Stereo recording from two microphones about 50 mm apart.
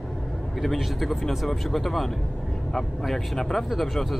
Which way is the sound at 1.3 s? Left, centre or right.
Centre.